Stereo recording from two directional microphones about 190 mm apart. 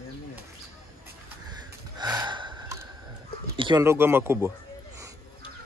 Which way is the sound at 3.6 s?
25° right (ahead or behind).